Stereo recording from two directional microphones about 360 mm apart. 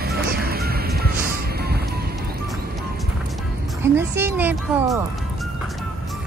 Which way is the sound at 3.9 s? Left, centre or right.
Centre.